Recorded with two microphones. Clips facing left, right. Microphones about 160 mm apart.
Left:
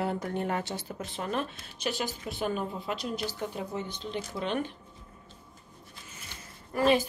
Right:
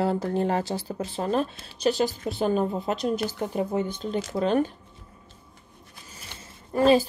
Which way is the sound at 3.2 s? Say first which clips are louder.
Right 7 dB; 55° right (ahead or behind).